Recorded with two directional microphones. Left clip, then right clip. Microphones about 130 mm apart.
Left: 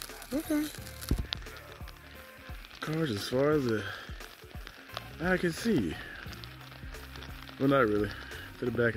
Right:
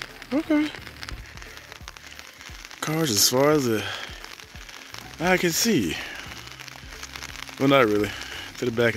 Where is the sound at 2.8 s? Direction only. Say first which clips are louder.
Right 11 dB; 5° right (ahead or behind).